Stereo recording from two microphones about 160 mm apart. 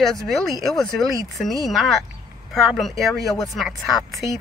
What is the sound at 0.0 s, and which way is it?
A woman's voice, centre (ahead or behind).